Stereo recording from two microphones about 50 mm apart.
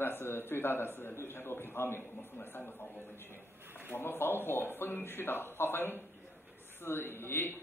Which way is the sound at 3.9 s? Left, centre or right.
Left.